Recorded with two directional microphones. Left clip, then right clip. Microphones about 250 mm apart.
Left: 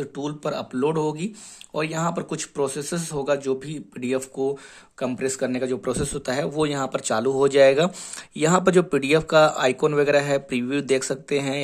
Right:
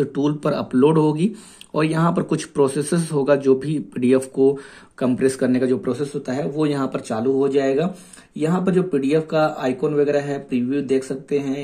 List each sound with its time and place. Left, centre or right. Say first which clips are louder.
0.0 s speech: right 7 dB; centre
5.9 s a man's voice: right 2 dB; left